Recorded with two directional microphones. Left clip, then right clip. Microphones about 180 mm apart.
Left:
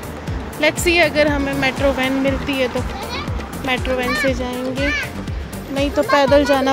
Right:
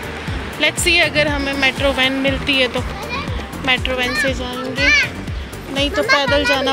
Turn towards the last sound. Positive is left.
turn(degrees=30)  # may be behind; listen again after turning